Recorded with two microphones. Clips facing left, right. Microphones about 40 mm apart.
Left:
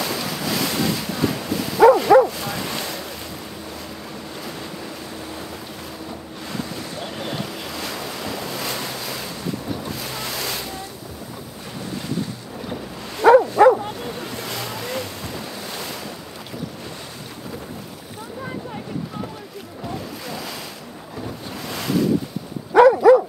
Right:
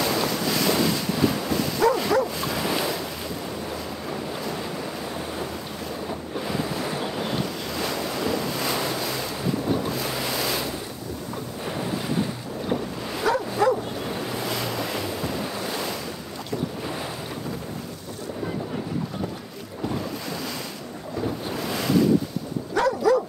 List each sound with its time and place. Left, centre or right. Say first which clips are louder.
0.0 s dog: right 2 dB; centre
6.0 s waves: right 4 dB; centre
9.7 s boat: right 4 dB; centre
13.2 s bow-wow: left 11 dB; left
14.0 s waves: right 1 dB; centre
21.5 s ocean: left 1 dB; centre
22.8 s dog: left 9 dB; left